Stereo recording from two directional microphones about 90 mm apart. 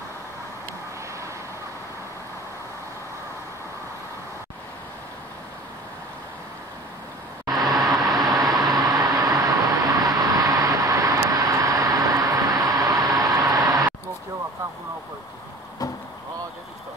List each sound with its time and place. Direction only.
7.7 s vehicle: 40° right (ahead or behind)
15.8 s vehicle: 45° left (ahead or behind)